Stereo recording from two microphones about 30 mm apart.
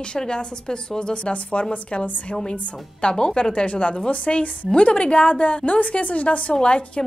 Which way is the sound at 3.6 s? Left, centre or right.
Left.